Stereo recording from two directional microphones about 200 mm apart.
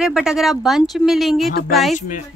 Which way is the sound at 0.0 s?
Centre (ahead or behind).